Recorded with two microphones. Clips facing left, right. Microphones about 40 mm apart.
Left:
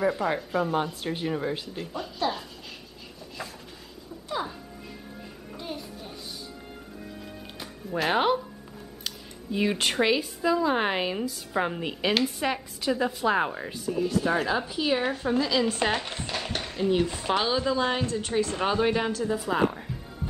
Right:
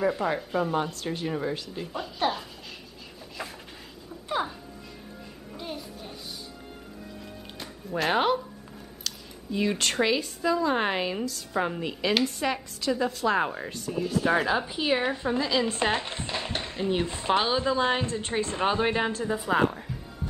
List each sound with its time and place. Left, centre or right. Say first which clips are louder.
0.0 s speech: even; centre
5.6 s music: even; centre
7.2 s music: left 1 dB; centre
9.0 s speech: right 1 dB; centre
12.1 s speech: even; centre
14.2 s a woman's voice: right 1 dB; centre
15.4 s a woman's voice: right 1 dB; centre